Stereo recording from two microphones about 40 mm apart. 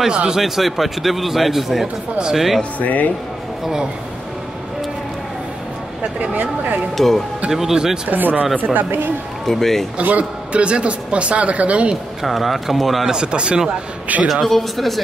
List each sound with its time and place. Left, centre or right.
0.3 s a man's voice: centre
2.8 s a man's voice: left
6.3 s speech: right
7.0 s a man's voice: centre
7.5 s speech: centre
8.1 s speech: right
9.5 s speech: centre
10.0 s a man's voice: right
12.2 s a man's voice: centre
13.1 s speech: right
14.2 s a man's voice: centre